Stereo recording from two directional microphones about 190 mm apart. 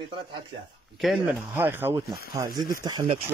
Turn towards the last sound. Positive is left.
turn(degrees=-20)  # may be behind; listen again after turning